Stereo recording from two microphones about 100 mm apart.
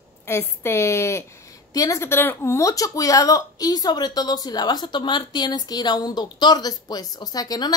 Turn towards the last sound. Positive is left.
turn(degrees=40)  # may be behind; listen again after turning